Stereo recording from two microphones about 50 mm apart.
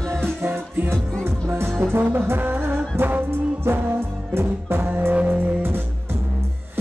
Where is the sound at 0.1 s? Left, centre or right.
Right.